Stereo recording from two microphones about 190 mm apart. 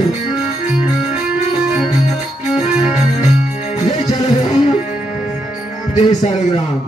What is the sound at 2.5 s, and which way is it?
Music, 35° left (ahead or behind).